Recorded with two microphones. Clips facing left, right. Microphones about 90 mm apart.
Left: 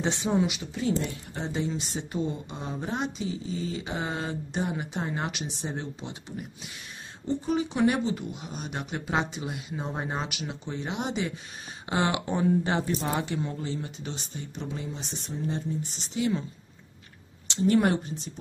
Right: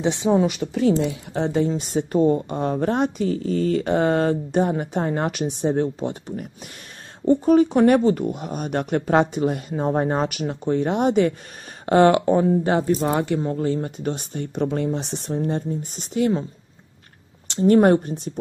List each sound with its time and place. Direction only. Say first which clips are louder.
0.0 s a woman's voice: right 8 dB; 20° right (ahead or behind)
0.4 s speech: right 6 dB; 45° right (ahead or behind)
0.7 s speech: right 9 dB; 90° right
1.5 s speech: right 8 dB; 45° right (ahead or behind)
17.5 s speech: right 8 dB; 45° right (ahead or behind)